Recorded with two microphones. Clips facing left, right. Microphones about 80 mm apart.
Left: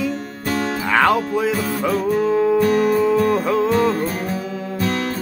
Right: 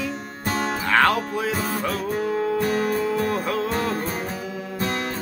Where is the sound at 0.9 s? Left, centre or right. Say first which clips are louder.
Left 3 dB; centre.